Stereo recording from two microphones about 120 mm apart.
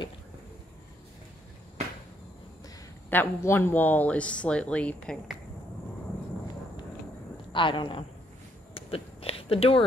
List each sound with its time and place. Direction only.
3.1 s speech: 15° left (ahead or behind)
7.5 s a woman's voice: 45° left (ahead or behind)
8.7 s a sound: 50° left (ahead or behind)